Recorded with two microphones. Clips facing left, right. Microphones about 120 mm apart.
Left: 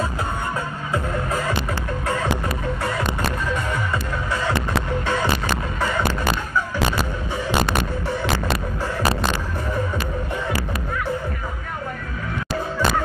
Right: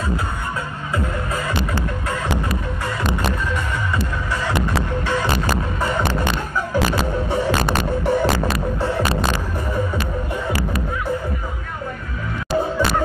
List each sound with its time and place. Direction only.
7.2 s music: 60° right (ahead or behind)